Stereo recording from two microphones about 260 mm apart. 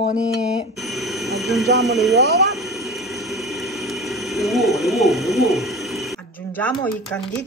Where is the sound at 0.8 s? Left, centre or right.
Centre.